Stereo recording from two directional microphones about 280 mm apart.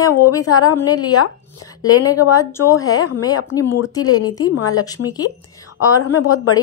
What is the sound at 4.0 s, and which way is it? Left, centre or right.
Speech, left.